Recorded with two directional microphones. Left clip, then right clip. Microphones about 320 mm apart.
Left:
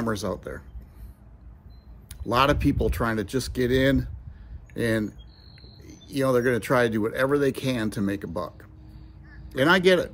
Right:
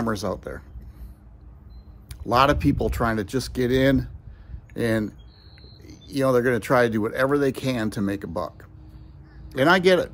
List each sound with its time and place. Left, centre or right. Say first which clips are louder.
0.0 s speech: right 2 dB; centre
2.0 s speech: right 3 dB; centre